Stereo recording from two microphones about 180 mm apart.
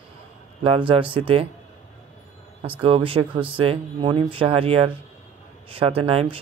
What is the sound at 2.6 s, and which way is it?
Speech, 30° right (ahead or behind).